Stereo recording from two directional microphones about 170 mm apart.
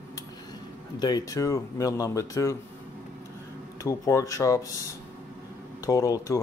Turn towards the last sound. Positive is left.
turn(degrees=20)  # may be behind; listen again after turning